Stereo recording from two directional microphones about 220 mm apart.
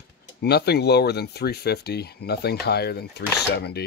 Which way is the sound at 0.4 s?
45° left (ahead or behind).